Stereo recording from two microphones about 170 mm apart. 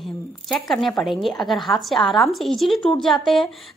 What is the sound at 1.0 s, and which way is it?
A woman's voice, centre (ahead or behind).